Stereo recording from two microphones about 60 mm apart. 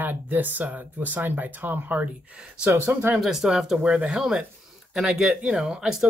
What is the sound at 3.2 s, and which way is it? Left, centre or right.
Speech, centre.